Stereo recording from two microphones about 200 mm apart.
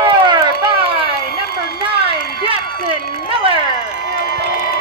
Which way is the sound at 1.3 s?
50° left (ahead or behind).